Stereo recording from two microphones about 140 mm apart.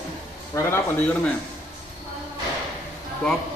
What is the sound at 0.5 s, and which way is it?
Speech, 20° left (ahead or behind).